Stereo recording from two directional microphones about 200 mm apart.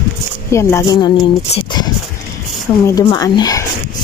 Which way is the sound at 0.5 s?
15° left (ahead or behind).